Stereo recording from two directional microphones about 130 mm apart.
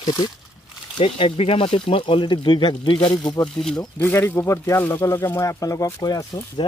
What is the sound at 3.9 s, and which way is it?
Speech, 15° left (ahead or behind).